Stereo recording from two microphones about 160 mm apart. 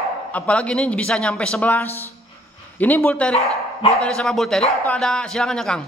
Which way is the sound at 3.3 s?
40° left (ahead or behind).